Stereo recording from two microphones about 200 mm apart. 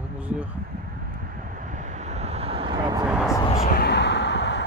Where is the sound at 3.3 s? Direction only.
15° left (ahead or behind).